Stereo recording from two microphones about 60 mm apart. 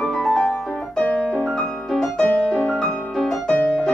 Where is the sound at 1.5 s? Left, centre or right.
Centre.